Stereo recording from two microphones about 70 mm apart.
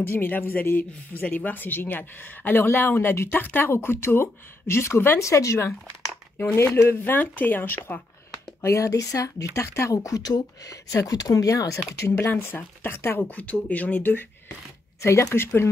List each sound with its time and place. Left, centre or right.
0.0 s speech: left
8.5 s a woman's voice: left
12.2 s speech: left
13.3 s speech: centre
15.0 s speech: left